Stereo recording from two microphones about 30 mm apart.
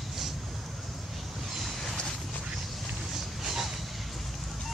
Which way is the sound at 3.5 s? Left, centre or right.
Centre.